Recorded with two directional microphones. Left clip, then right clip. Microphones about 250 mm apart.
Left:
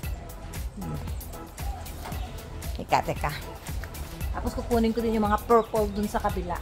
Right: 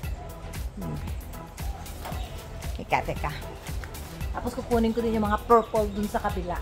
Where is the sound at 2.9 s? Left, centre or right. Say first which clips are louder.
Left 2 dB; left.